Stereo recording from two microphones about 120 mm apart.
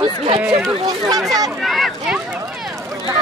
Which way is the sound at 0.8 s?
30° right (ahead or behind).